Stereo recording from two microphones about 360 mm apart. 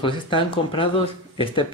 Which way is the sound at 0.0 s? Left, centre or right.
Centre.